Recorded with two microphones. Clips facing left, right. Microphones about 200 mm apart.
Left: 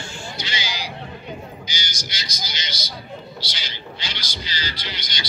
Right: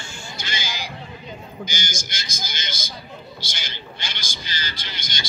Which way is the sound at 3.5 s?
50° right (ahead or behind).